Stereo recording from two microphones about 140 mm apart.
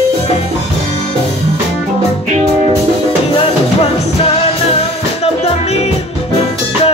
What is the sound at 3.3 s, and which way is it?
Music, 45° left (ahead or behind).